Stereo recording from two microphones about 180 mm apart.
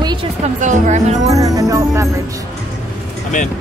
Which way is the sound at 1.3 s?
20° right (ahead or behind).